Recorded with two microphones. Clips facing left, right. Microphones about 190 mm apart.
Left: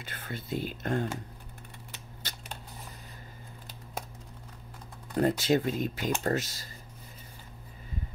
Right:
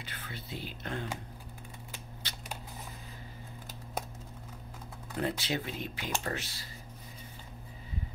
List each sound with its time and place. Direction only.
0.0 s speech: 45° left (ahead or behind)
2.2 s a sound: 45° left (ahead or behind)
5.1 s speech: 45° left (ahead or behind)